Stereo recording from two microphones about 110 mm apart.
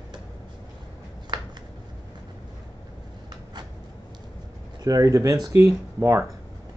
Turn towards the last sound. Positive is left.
turn(degrees=-25)  # may be behind; listen again after turning